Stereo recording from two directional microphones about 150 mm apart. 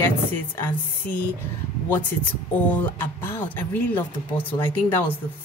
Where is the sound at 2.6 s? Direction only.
10° left (ahead or behind).